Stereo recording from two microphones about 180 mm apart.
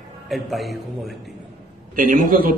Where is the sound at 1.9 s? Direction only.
50° right (ahead or behind).